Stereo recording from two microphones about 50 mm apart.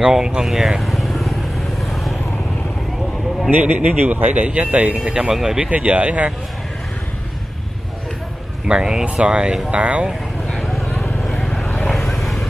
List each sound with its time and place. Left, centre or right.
0.0 s speech: centre
3.4 s a man's voice: right
5.0 s speech: centre
5.6 s speech: right
8.6 s speech: centre
10.5 s a sound: centre
11.7 s vehicle: centre
12.1 s vehicle: centre